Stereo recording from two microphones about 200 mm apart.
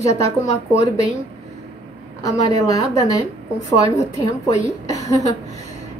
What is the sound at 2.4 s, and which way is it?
Speech, 15° left (ahead or behind).